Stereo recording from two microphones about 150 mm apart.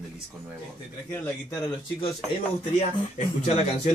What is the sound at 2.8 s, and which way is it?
Speech, 50° left (ahead or behind).